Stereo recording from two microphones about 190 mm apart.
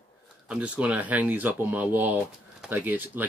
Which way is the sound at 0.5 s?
5° right (ahead or behind).